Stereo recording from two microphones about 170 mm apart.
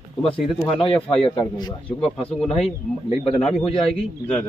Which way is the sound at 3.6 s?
35° left (ahead or behind).